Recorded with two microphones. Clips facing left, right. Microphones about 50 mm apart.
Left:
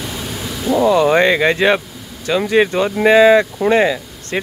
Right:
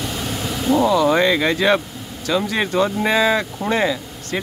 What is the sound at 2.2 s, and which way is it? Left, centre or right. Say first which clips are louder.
Speech: left 6 dB; left.